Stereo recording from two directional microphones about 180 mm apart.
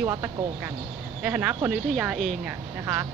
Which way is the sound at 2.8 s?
15° right (ahead or behind).